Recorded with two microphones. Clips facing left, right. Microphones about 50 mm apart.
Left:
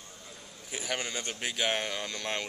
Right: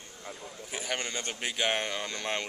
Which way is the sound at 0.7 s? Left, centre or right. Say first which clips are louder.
Even; centre.